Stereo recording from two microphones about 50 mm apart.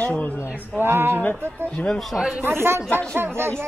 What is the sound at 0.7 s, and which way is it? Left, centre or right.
Speech, right.